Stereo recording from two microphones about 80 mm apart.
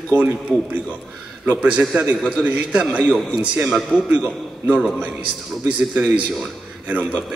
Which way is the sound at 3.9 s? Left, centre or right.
Left.